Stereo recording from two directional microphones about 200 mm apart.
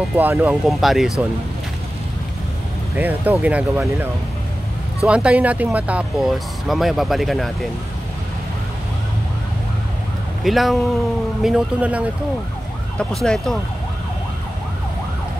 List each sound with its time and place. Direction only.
0.1 s speech: 10° right (ahead or behind)
3.0 s speech: 10° right (ahead or behind)
10.4 s speech: centre (ahead or behind)
13.1 s speech: 5° left (ahead or behind)